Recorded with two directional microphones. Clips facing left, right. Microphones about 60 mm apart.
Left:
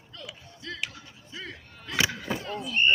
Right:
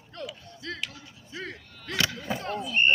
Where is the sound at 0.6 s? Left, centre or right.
Right.